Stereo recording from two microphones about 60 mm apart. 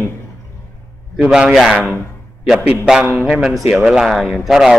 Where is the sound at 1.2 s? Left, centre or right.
Centre.